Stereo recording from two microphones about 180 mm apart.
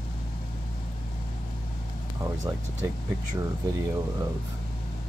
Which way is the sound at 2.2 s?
15° right (ahead or behind).